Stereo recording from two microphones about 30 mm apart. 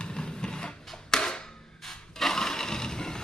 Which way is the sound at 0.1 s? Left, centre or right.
Left.